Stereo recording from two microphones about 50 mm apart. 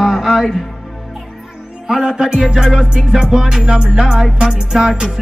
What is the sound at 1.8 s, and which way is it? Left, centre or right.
Music, centre.